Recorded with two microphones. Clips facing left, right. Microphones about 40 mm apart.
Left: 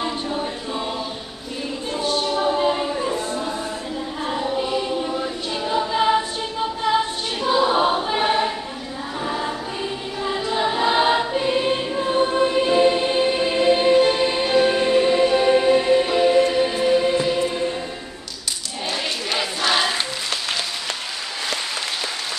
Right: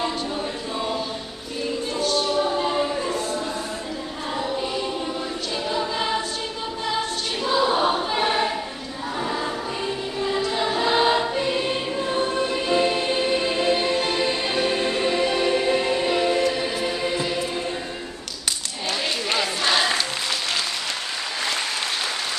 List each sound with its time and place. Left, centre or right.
0.0 s choir: centre
2.0 s a sound: centre
4.3 s choir: centre
7.4 s choir: centre
16.8 s music: centre
19.3 s crowd: centre